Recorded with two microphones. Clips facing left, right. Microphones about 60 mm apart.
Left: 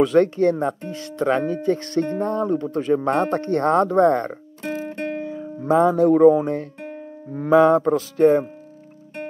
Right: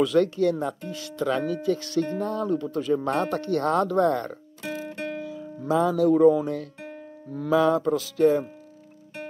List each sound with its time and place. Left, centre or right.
0.0 s speech: left